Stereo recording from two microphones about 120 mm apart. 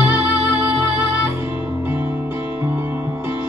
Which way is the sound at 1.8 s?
15° right (ahead or behind).